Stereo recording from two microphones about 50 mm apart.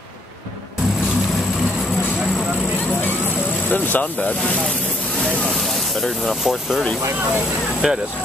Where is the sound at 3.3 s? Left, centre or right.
Left.